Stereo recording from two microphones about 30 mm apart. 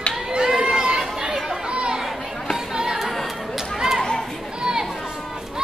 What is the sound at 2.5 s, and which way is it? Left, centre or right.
Chatter, centre.